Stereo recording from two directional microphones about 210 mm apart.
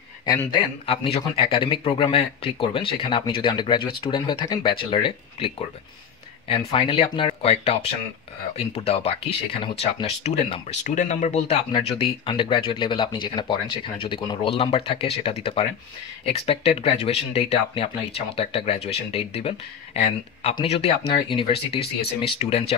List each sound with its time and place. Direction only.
0.2 s speech: 20° left (ahead or behind)